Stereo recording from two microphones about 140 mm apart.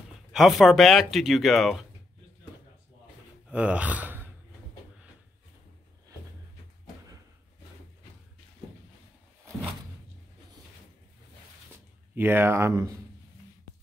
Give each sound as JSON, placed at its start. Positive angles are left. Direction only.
{"t": 0.3, "sound": "speech", "side_deg": 0}
{"t": 3.4, "sound": "speech", "side_deg": -10}
{"t": 11.7, "sound": "speech", "side_deg": -15}